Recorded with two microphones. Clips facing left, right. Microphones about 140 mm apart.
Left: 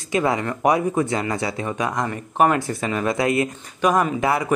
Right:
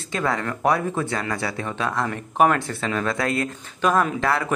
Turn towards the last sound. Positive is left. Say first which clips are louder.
# left 2 dB
turn(degrees=15)  # may be behind; listen again after turning